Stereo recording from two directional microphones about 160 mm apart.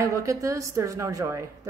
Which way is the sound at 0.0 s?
20° right (ahead or behind).